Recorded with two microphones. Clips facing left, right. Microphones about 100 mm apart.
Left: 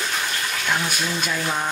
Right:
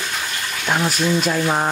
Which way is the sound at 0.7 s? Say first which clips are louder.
Right 7 dB; 35° right (ahead or behind).